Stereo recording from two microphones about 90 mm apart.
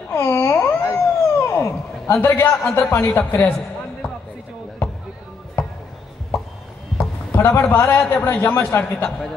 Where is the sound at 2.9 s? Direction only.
30° left (ahead or behind).